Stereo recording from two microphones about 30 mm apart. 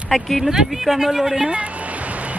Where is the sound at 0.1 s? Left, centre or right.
Centre.